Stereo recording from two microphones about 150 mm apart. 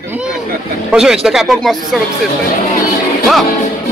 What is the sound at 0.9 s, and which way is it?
Speech, 5° right (ahead or behind).